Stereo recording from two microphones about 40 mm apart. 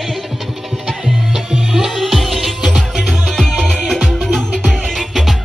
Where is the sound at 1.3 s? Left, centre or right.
Centre.